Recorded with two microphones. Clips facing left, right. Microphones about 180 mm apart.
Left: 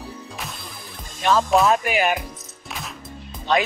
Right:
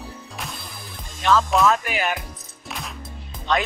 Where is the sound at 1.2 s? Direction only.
15° left (ahead or behind).